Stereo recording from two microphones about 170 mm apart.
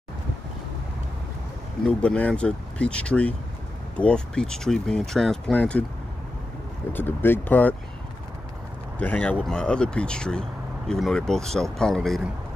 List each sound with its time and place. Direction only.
1.9 s speech: 5° left (ahead or behind)
6.9 s speech: 10° left (ahead or behind)
8.9 s speech: 10° left (ahead or behind)